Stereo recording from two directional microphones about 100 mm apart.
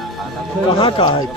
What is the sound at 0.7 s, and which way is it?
Speech, 55° left (ahead or behind).